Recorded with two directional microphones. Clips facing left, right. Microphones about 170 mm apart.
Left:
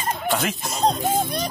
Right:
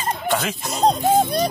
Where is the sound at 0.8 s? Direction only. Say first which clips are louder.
Right 5 dB; 35° right (ahead or behind).